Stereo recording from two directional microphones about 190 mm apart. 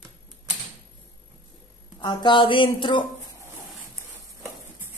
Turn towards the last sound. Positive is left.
turn(degrees=-10)  # may be behind; listen again after turning